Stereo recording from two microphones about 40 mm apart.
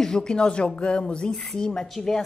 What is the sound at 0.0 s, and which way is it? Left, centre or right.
Speech, centre.